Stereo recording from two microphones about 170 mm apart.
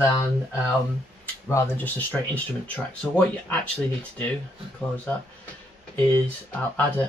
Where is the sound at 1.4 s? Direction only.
15° left (ahead or behind).